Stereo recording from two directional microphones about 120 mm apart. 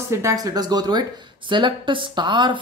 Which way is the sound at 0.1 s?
25° right (ahead or behind).